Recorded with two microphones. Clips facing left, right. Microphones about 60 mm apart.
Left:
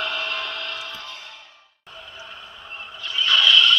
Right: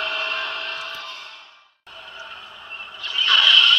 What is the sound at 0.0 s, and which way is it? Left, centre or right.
Music, right.